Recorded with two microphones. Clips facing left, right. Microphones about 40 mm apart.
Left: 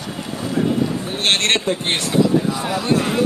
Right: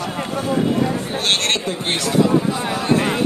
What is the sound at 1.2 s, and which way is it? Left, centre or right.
Speech, left.